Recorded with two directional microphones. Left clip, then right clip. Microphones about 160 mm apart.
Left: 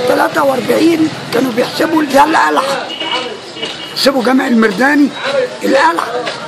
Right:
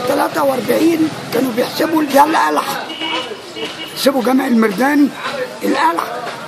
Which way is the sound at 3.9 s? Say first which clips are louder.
Left 3 dB; 10° right (ahead or behind).